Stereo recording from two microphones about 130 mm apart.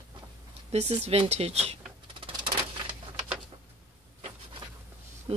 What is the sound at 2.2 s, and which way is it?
Typewriter, 40° right (ahead or behind).